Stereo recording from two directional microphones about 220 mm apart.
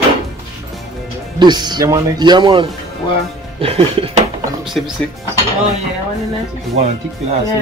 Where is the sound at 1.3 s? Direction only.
20° right (ahead or behind).